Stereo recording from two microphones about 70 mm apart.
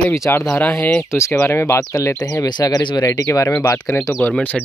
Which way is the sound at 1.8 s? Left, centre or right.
Left.